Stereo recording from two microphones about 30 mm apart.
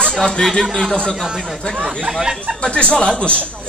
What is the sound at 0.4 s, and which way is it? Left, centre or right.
Speech, centre.